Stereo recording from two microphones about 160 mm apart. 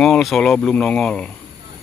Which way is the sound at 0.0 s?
Centre (ahead or behind).